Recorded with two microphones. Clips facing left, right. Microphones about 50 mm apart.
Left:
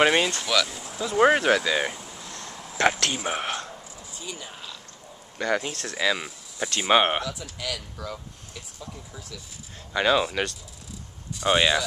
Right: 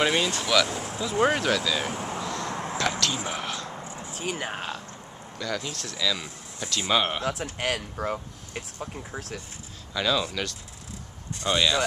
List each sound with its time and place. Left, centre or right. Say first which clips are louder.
0.0 s speech: left 4 dB; left
0.3 s speech: right 1 dB; centre
0.7 s speech: right 6 dB; right
1.1 s speech: left 4 dB; left
2.0 s a sound: right 9 dB; right
2.4 s a sound: right 9 dB; right
3.3 s speech: left 3 dB; left
3.7 s a sound: right 6 dB; right
4.1 s speech: right 7 dB; right
5.4 s speech: left 5 dB; left
7.2 s speech: right 5 dB; right
9.9 s speech: left 4 dB; left